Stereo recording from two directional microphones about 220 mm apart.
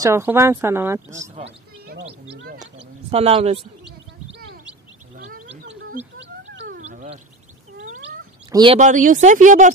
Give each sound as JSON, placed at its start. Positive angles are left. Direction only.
{"t": 0.0, "sound": "speech", "side_deg": -10}
{"t": 2.3, "sound": "speech", "side_deg": -45}
{"t": 2.6, "sound": "speech", "side_deg": -25}
{"t": 6.1, "sound": "cat", "side_deg": -55}
{"t": 8.5, "sound": "speech", "side_deg": -20}
{"t": 8.7, "sound": "speech", "side_deg": -35}